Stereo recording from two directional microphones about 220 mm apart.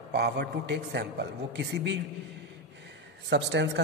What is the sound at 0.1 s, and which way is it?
A woman's voice, 50° right (ahead or behind).